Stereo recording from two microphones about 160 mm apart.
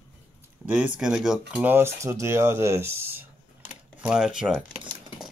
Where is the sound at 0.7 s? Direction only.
5° right (ahead or behind).